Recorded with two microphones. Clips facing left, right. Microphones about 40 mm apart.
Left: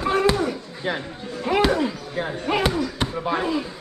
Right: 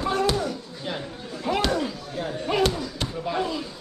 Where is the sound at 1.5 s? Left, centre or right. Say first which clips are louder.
Left 4 dB; centre.